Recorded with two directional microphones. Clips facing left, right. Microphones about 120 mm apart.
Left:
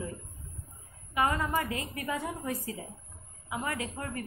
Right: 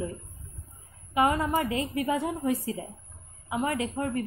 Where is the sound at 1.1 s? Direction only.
20° right (ahead or behind).